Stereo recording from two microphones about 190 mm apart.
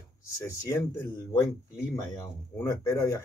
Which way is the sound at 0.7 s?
15° left (ahead or behind).